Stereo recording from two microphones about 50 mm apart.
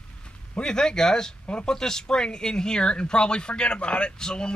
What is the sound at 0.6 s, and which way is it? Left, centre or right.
Speech, centre.